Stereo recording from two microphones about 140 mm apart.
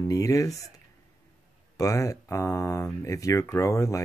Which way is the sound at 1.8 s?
25° left (ahead or behind).